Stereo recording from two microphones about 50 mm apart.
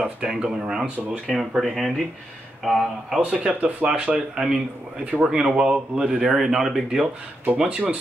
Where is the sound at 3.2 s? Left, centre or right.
Right.